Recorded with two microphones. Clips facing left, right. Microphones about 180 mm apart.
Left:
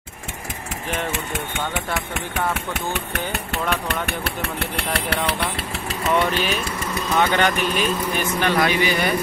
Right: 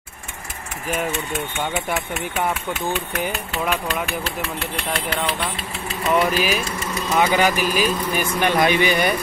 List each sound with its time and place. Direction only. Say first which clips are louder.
6.1 s speech: right 2 dB; 5° right (ahead or behind)
8.4 s speech: right 2 dB; 20° right (ahead or behind)